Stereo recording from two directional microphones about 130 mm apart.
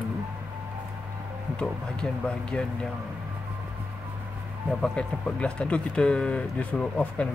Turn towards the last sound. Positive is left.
turn(degrees=10)  # may be behind; listen again after turning